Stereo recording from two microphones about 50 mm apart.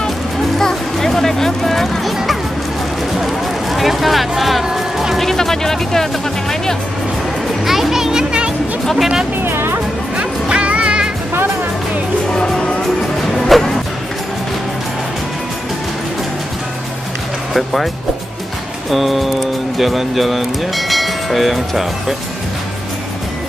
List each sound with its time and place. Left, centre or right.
0.6 s music: centre
3.7 s music: centre
7.6 s music: centre
8.9 s speech: centre
9.4 s speech: right
10.1 s music: right
12.3 s music: centre
18.9 s speech: centre